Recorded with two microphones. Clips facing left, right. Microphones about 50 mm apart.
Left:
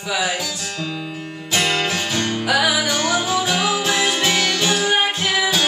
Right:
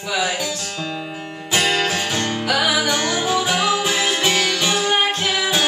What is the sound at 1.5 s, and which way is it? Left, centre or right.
Music, centre.